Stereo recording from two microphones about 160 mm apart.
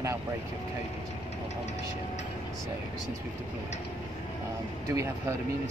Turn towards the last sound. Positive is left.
turn(degrees=-20)  # may be behind; listen again after turning